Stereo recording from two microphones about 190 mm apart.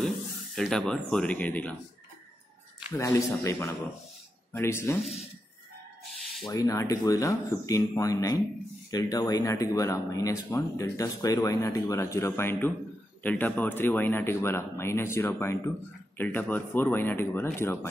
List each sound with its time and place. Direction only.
0.6 s speech: centre (ahead or behind)
2.9 s speech: 15° left (ahead or behind)
6.4 s speech: 20° left (ahead or behind)